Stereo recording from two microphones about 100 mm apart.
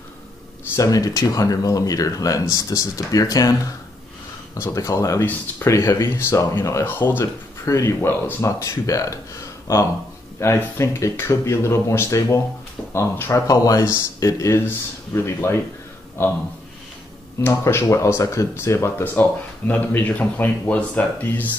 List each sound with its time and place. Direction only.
0.7 s speech: 35° left (ahead or behind)
4.6 s speech: 30° left (ahead or behind)
17.4 s speech: 25° left (ahead or behind)